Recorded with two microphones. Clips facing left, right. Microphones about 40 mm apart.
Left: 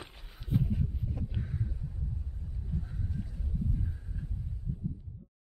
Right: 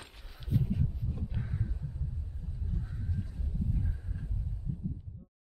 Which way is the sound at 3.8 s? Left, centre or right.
Centre.